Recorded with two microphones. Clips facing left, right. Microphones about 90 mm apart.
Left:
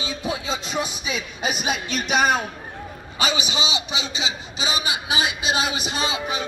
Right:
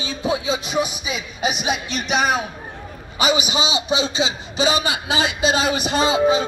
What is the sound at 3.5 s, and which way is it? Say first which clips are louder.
Speech: right 4 dB; 20° right (ahead or behind).